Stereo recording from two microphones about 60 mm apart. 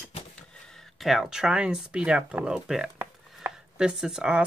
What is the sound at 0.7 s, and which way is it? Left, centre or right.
Speech, centre.